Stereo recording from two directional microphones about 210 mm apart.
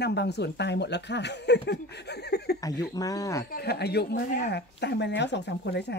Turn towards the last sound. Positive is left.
turn(degrees=55)  # may be behind; listen again after turning